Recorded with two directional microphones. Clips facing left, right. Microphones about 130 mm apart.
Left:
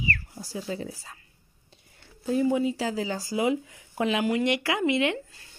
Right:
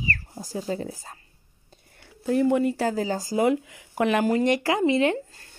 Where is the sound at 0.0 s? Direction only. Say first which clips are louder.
Even; 40° right (ahead or behind).